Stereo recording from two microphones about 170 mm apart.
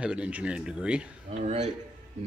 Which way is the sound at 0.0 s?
5° right (ahead or behind).